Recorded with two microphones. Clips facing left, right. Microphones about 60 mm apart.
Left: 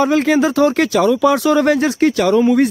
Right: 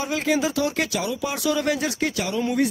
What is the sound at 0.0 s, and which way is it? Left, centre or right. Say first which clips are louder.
Speech: left 9 dB; left.